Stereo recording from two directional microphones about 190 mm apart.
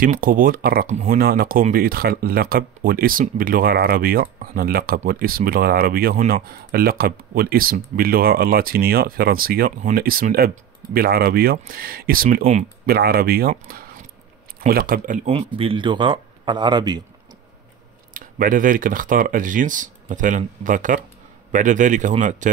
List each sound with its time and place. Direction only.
0.0 s speech: 45° right (ahead or behind)
0.9 s speech: 35° right (ahead or behind)
1.2 s speech: 50° right (ahead or behind)
12.8 s speech: 55° right (ahead or behind); by 17.0 s 25° right (ahead or behind)
18.1 s speech: 45° right (ahead or behind)